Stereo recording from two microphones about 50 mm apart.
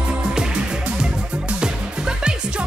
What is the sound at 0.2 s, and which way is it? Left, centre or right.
Music, centre.